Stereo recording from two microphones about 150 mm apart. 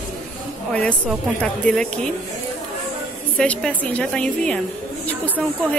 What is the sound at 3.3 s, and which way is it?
Speech, 5° left (ahead or behind).